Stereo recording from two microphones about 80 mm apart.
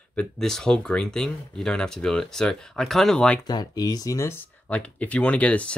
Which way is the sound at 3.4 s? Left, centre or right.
Left.